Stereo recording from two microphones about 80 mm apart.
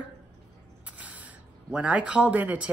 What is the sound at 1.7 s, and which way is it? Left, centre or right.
Speech, centre.